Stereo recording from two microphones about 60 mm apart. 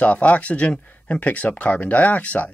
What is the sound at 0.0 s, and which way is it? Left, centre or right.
Speech, left.